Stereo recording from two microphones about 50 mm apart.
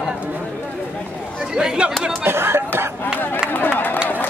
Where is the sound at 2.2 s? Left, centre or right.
Right.